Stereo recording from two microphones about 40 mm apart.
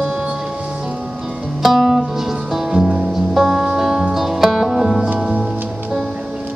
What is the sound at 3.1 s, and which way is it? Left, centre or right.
Music, centre.